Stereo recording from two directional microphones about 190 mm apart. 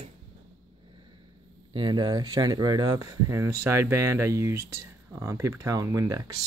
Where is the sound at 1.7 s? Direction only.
25° right (ahead or behind).